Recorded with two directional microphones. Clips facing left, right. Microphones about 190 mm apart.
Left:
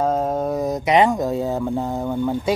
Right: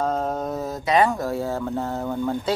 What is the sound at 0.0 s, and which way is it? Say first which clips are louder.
Speech: left 4 dB; 10° left (ahead or behind).